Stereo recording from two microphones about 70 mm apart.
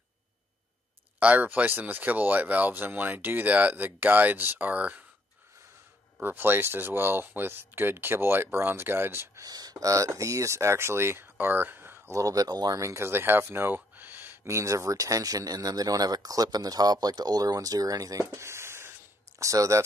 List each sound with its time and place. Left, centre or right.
1.2 s speech: right
6.2 s speech: right
9.4 s speech: right
12.1 s speech: right